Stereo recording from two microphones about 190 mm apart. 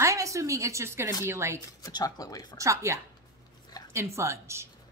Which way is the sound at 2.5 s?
15° right (ahead or behind).